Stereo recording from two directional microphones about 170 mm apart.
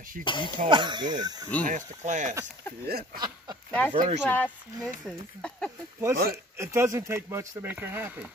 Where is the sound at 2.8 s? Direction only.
65° right (ahead or behind).